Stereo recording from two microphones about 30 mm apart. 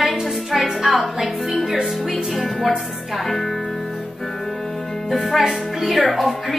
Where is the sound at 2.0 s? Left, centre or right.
Centre.